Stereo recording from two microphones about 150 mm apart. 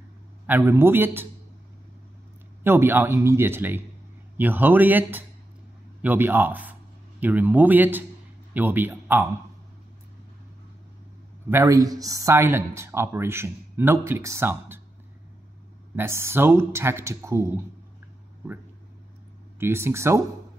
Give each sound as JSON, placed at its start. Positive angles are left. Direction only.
{"t": 0.5, "sound": "speech", "side_deg": -15}
{"t": 2.6, "sound": "speech", "side_deg": -15}
{"t": 11.4, "sound": "speech", "side_deg": -20}
{"t": 16.0, "sound": "speech", "side_deg": -15}
{"t": 19.6, "sound": "speech", "side_deg": -15}